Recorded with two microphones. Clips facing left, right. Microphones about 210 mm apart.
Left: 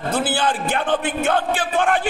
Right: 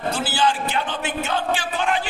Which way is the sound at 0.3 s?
55° left (ahead or behind).